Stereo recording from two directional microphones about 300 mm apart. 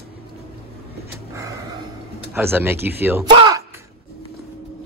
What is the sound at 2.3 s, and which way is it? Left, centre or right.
Speech, centre.